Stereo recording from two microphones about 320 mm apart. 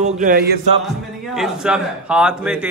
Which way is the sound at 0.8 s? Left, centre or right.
Centre.